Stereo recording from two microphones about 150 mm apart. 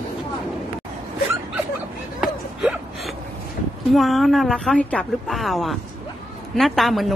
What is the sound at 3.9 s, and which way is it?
A woman's voice, centre (ahead or behind).